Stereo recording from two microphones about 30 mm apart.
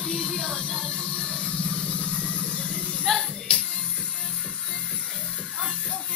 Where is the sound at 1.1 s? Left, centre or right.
Left.